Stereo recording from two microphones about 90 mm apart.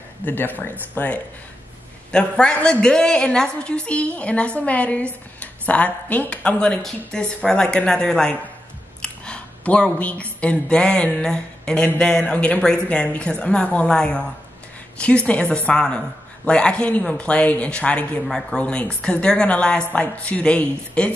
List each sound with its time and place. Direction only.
0.2 s a woman's voice: 20° left (ahead or behind)
9.0 s a sound: 10° left (ahead or behind)
10.4 s a woman's voice: 10° left (ahead or behind)